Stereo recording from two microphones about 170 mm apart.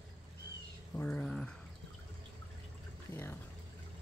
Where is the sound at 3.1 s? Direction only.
15° left (ahead or behind).